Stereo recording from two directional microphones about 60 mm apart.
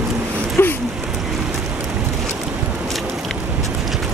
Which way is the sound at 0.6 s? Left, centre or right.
Left.